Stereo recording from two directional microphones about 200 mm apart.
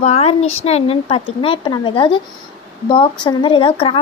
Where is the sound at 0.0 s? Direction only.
30° left (ahead or behind).